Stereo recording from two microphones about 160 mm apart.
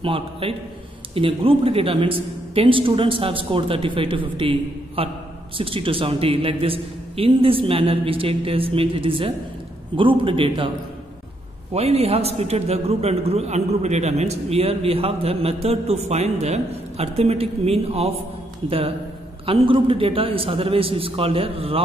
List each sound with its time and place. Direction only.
0.0 s a man's voice: 35° right (ahead or behind)
11.7 s a man's voice: 40° right (ahead or behind)